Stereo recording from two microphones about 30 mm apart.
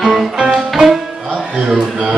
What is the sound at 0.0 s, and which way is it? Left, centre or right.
Music, centre.